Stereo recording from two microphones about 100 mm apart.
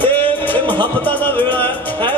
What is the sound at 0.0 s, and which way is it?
Music, 20° left (ahead or behind).